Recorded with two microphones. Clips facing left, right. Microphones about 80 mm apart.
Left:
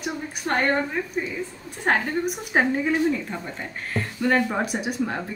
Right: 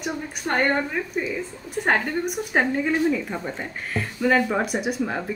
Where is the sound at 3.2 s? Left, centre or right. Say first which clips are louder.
Right 3 dB; centre.